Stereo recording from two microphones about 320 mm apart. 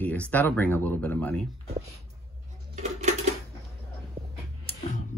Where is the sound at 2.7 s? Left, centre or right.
Right.